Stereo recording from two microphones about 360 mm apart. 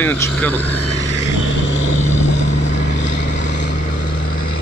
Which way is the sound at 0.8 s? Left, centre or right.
Left.